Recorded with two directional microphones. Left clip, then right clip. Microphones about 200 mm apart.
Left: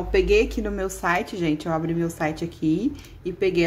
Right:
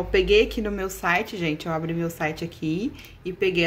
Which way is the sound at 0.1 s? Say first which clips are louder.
Even; 5° right (ahead or behind).